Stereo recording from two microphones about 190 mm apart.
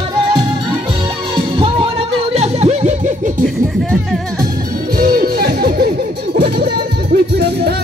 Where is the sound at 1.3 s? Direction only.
25° right (ahead or behind).